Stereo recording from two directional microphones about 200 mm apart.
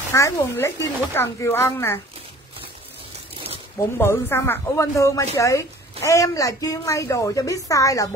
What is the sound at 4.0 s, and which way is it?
Speech, 10° left (ahead or behind).